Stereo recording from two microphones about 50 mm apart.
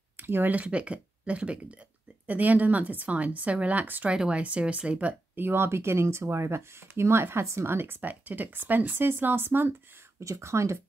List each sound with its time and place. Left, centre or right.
0.2 s speech: right
0.6 s a woman's voice: right
4.1 s speech: right
5.3 s speech: right
10.2 s speech: right